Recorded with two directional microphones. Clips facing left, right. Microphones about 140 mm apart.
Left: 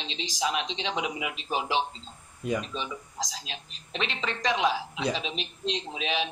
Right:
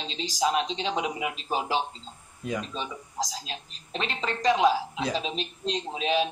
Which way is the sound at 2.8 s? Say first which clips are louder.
Right 2 dB; 40° right (ahead or behind).